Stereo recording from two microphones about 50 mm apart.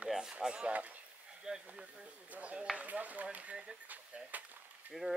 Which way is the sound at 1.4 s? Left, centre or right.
Centre.